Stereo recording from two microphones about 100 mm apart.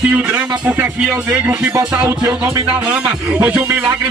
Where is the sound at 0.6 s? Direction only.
20° right (ahead or behind).